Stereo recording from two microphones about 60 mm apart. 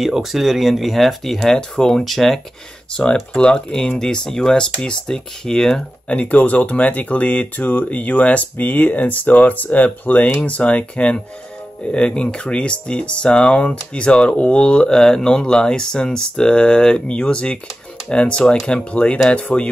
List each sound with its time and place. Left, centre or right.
0.0 s speech: centre
3.0 s speech: centre
6.0 s speech: left